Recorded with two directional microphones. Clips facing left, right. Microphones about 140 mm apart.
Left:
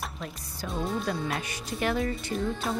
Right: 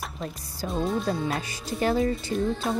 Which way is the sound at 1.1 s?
30° right (ahead or behind).